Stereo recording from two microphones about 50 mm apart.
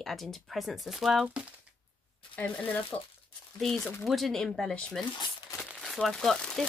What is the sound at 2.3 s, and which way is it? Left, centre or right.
Speech, left.